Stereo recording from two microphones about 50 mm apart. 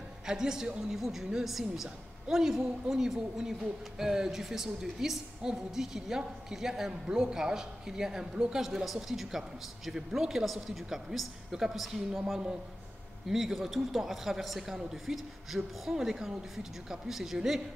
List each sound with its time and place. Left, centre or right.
0.3 s a woman's voice: centre
0.9 s a woman's voice: centre
13.3 s speech: centre